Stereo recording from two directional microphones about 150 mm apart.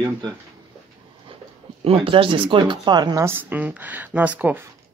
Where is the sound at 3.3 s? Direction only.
15° right (ahead or behind).